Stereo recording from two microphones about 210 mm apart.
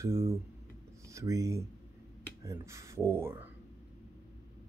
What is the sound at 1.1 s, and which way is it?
Speech, 15° right (ahead or behind).